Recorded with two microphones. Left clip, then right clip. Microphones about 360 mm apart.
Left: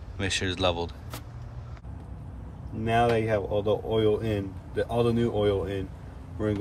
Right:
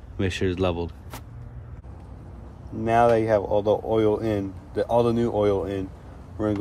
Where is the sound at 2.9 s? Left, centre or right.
Centre.